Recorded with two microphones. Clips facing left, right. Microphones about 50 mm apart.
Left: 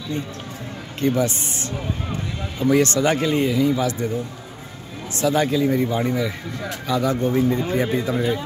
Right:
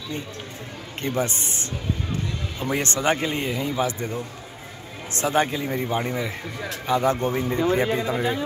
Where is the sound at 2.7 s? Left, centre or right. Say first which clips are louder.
Left 5 dB; right.